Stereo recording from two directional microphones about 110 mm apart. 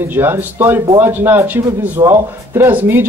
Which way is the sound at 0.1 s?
20° right (ahead or behind).